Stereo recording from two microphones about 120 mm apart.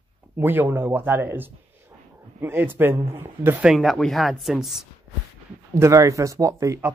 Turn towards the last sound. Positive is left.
turn(degrees=-25)  # may be behind; listen again after turning